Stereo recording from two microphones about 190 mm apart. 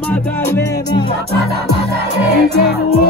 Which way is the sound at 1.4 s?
55° right (ahead or behind).